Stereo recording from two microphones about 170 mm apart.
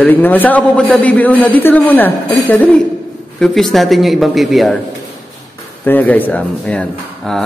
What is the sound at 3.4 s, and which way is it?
A man's voice, centre (ahead or behind).